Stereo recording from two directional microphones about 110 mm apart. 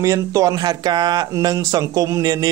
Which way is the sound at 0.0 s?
30° right (ahead or behind).